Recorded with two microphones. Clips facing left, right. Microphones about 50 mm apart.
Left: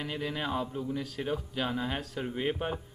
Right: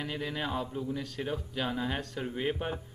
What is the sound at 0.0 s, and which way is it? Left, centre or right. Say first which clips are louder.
Speech: left 1 dB; centre.